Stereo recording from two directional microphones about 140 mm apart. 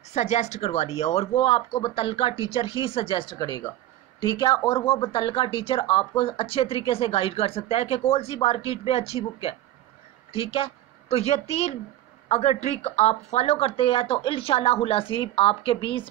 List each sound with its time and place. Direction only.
0.1 s speech: 55° left (ahead or behind)